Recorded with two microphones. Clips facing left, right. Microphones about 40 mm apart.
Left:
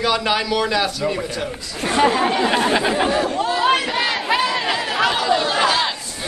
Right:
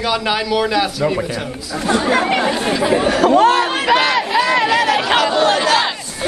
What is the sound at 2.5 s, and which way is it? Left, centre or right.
Speech, left.